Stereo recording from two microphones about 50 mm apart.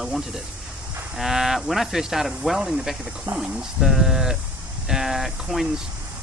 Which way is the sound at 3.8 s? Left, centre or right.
Centre.